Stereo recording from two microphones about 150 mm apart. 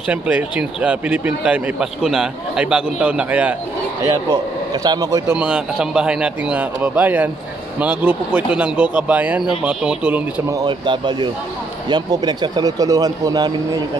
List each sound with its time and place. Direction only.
0.1 s speech: 10° right (ahead or behind)
4.0 s speech: 20° right (ahead or behind)
5.3 s speech: 5° right (ahead or behind)
10.5 s speech: 30° right (ahead or behind)